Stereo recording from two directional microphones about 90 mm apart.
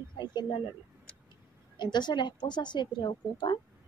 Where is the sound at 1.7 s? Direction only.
55° left (ahead or behind).